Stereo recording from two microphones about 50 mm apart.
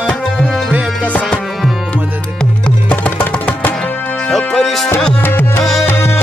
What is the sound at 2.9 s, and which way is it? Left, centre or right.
Music, left.